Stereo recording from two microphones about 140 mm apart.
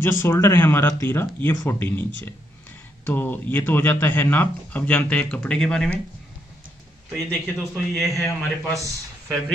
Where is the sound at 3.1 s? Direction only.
15° left (ahead or behind).